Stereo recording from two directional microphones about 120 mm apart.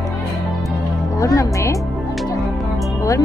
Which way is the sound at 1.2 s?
25° left (ahead or behind).